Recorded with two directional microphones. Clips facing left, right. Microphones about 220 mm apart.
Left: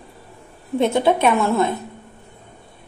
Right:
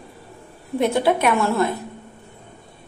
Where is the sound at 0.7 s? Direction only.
25° left (ahead or behind).